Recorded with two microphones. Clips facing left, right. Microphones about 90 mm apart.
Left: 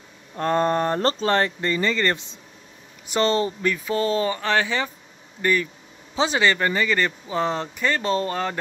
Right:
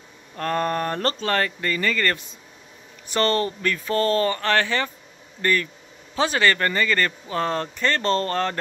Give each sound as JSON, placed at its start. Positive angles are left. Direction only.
{"t": 0.4, "sound": "speech", "side_deg": 25}